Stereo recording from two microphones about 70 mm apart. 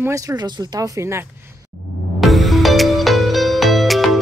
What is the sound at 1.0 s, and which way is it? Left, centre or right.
Speech, right.